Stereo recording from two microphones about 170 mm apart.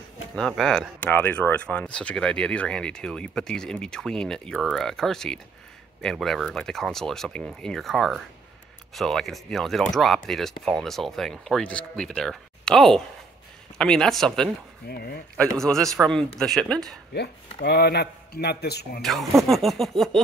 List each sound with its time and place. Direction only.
0.4 s speech: centre (ahead or behind)
14.9 s speech: 65° left (ahead or behind)
15.5 s speech: 5° left (ahead or behind)
17.1 s speech: 80° left
18.9 s speech: centre (ahead or behind)